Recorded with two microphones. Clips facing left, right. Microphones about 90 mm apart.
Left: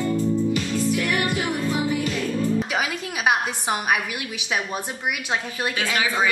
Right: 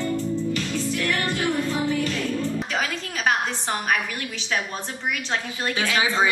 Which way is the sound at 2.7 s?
10° left (ahead or behind).